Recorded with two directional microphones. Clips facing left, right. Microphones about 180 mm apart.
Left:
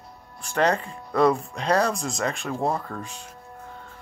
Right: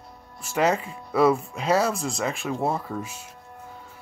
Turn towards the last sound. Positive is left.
turn(degrees=-5)  # may be behind; listen again after turning